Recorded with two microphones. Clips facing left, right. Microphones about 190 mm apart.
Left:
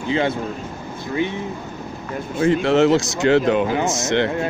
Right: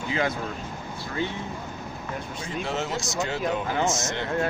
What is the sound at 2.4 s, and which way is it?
A man's voice, 75° left (ahead or behind).